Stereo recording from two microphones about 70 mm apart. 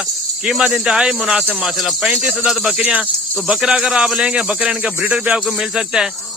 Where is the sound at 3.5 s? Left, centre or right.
Centre.